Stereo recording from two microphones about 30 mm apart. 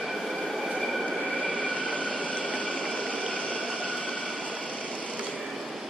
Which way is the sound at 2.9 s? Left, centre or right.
Left.